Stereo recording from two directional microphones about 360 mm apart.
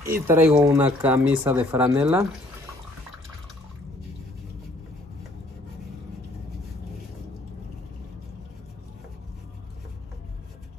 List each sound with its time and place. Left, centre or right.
0.0 s speech: centre